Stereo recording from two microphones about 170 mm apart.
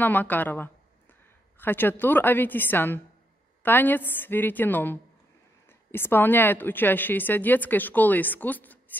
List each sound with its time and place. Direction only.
0.0 s a woman's voice: 10° left (ahead or behind)